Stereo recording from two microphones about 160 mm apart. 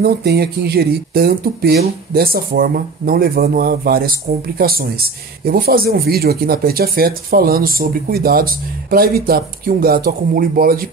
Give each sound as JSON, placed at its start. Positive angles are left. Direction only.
{"t": 0.0, "sound": "speech", "side_deg": -90}